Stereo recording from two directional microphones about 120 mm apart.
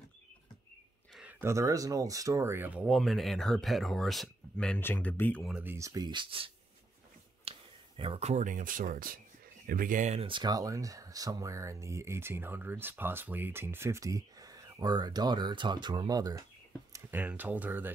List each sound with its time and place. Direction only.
1.4 s speech: 25° right (ahead or behind)
2.9 s speech: centre (ahead or behind)
4.7 s speech: 15° left (ahead or behind)
5.6 s speech: 20° right (ahead or behind)
6.0 s speech: 45° right (ahead or behind)
7.5 s a sound: 55° right (ahead or behind)
8.0 s speech: 60° right (ahead or behind); by 10.2 s 85° right
10.2 s speech: 40° right (ahead or behind)
16.9 s speech: 15° right (ahead or behind)